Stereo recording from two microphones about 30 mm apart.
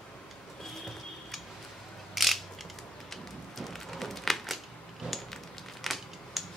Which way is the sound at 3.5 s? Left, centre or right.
Centre.